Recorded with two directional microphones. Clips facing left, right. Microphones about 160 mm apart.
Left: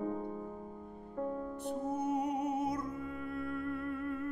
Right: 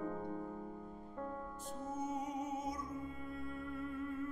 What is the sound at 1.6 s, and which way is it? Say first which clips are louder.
Music: left 7 dB; 65° left (ahead or behind).